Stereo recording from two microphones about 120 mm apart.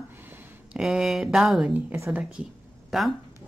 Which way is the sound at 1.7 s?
20° right (ahead or behind).